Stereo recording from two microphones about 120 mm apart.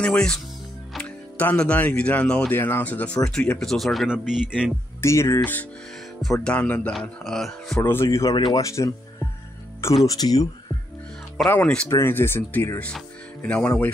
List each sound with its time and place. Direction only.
0.0 s speech: 5° left (ahead or behind)
5.0 s speech: 25° left (ahead or behind); by 7.8 s centre (ahead or behind)
7.8 s speech: 20° left (ahead or behind)
10.0 s speech: 30° left (ahead or behind)
11.4 s speech: 20° left (ahead or behind)